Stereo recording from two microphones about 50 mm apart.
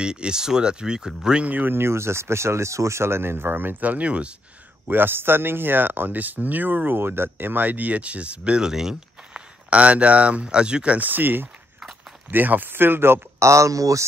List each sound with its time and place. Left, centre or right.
0.0 s speech: centre
1.4 s speech: right
1.7 s speech: right
4.8 s speech: right; by 8.9 s centre
9.3 s speech: right
11.0 s speech: right
13.4 s speech: right